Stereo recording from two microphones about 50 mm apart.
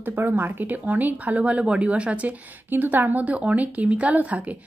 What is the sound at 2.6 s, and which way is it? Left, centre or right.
Speech, right.